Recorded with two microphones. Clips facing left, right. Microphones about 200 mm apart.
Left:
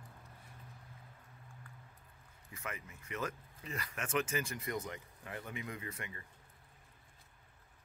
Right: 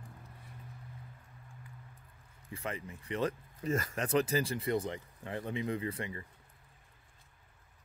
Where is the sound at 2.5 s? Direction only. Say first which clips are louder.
Right 6 dB; 30° right (ahead or behind).